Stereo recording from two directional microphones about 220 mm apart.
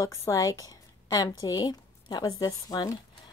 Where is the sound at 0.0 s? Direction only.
15° left (ahead or behind).